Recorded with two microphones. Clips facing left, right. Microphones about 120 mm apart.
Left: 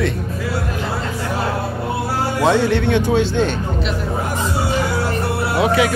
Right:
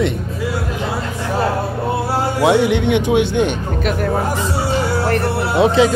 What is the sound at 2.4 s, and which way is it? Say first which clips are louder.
Speech: right 2 dB; 15° right (ahead or behind).